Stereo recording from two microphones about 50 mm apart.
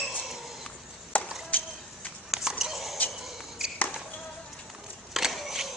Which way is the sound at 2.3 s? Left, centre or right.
Centre.